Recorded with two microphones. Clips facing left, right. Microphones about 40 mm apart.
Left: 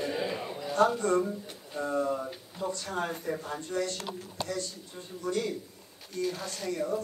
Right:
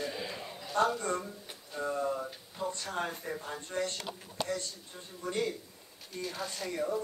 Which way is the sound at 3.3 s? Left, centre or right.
Right.